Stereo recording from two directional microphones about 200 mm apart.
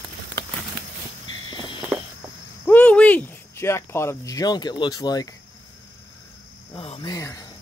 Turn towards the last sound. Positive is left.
turn(degrees=15)  # may be behind; listen again after turning